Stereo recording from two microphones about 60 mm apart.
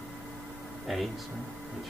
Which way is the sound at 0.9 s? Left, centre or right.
Centre.